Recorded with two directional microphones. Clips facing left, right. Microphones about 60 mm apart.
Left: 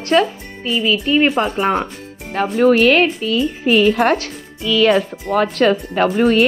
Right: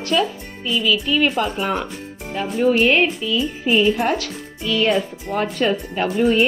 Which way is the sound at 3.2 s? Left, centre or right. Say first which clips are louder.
Left 4 dB; left.